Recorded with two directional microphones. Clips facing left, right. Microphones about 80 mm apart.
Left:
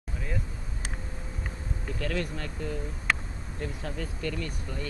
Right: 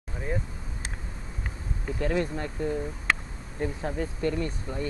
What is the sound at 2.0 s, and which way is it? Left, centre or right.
Speech, right.